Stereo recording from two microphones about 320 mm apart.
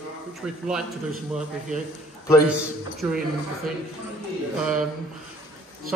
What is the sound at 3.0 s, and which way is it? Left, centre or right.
Speech, centre.